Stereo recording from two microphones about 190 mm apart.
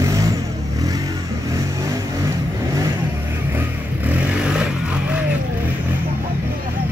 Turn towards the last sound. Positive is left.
turn(degrees=-5)  # may be behind; listen again after turning